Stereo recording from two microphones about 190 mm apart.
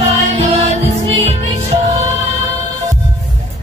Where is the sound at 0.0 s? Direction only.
35° right (ahead or behind).